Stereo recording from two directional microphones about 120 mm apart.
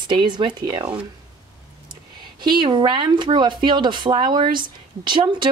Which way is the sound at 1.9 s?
40° right (ahead or behind).